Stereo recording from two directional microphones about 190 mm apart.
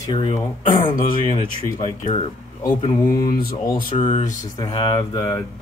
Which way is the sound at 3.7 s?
45° left (ahead or behind).